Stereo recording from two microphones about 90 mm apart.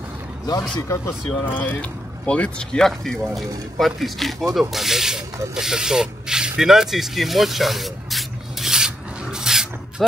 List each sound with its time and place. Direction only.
0.7 s speech: 35° left (ahead or behind)
1.4 s speech: 20° left (ahead or behind); by 5.2 s 5° right (ahead or behind)
5.5 s spray: 5° right (ahead or behind)